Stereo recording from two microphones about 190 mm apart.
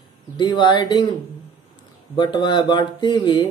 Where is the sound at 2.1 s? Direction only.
25° left (ahead or behind).